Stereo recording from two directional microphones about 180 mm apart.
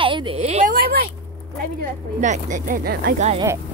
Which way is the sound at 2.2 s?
45° right (ahead or behind).